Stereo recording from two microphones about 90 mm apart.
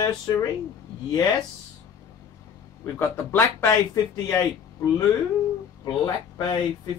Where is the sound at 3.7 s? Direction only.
40° left (ahead or behind).